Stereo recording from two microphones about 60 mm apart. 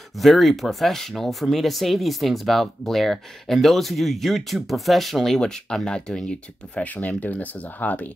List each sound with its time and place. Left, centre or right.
0.2 s speech: centre
6.8 s speech: left